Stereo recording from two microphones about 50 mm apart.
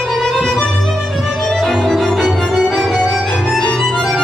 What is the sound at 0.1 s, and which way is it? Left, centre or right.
Music, centre.